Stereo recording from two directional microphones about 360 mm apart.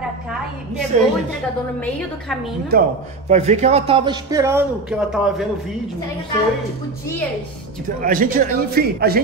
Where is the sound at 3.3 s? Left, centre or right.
Centre.